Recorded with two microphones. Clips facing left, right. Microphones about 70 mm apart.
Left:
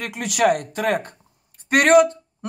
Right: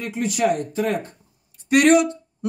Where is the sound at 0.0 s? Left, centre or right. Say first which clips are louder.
Left 2 dB; left.